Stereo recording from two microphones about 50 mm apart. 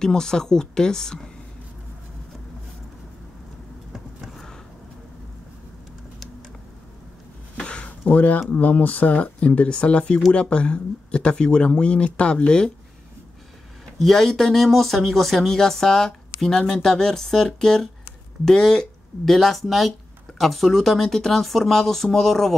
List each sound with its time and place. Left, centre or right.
0.0 s speech: centre
7.5 s a sound: left
8.5 s speech: left
13.9 s speech: centre